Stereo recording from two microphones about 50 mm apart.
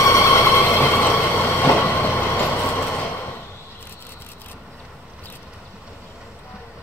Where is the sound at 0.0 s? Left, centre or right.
Left.